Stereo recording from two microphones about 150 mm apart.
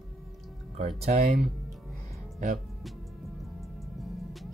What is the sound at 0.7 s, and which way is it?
Speech, 45° right (ahead or behind).